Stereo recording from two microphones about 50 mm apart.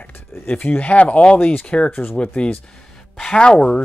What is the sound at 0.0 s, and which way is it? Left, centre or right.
Speech, left.